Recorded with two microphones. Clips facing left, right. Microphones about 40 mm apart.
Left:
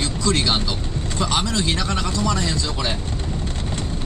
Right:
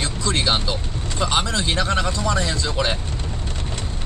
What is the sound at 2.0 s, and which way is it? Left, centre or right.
Speech, right.